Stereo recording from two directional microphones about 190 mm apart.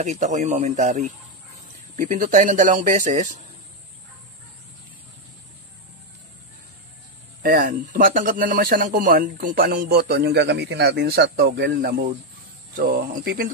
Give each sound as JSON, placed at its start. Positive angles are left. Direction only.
{"t": 0.0, "sound": "speech", "side_deg": -40}
{"t": 7.4, "sound": "a man's voice", "side_deg": -60}
{"t": 7.8, "sound": "a man's voice", "side_deg": -45}